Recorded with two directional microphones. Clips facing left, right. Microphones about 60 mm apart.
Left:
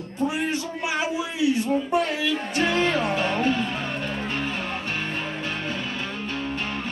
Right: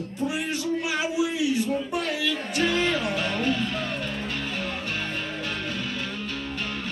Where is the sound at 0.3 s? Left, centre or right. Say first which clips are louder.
Even; left.